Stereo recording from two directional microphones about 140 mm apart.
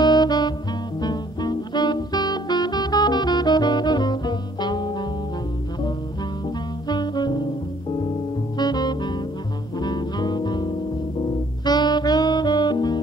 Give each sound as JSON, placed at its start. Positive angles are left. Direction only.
{"t": 0.0, "sound": "music", "side_deg": 30}
{"t": 6.9, "sound": "music", "side_deg": 30}
{"t": 8.5, "sound": "music", "side_deg": 30}
{"t": 11.6, "sound": "saxophone", "side_deg": 30}